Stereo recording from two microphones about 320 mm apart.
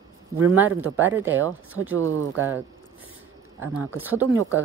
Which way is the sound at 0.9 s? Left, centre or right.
Centre.